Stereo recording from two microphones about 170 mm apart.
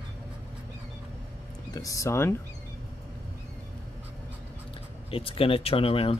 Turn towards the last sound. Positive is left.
turn(degrees=35)  # may be behind; listen again after turning